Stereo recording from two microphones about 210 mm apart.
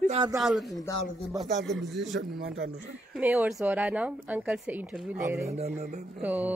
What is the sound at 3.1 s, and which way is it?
Speech, 10° right (ahead or behind).